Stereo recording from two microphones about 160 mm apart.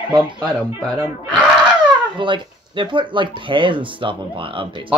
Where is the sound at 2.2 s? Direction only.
30° right (ahead or behind).